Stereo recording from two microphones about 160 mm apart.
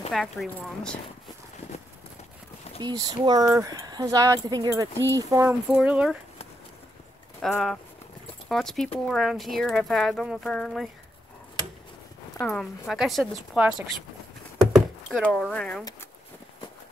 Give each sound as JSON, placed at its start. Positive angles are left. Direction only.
{"t": 0.1, "sound": "speech", "side_deg": 0}
{"t": 2.8, "sound": "speech", "side_deg": -25}
{"t": 5.7, "sound": "speech", "side_deg": -5}
{"t": 7.4, "sound": "speech", "side_deg": 5}
{"t": 12.4, "sound": "speech", "side_deg": 5}
{"t": 14.7, "sound": "a sound", "side_deg": 5}